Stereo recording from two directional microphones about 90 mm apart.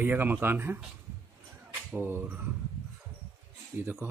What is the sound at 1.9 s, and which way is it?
Speech, 25° right (ahead or behind).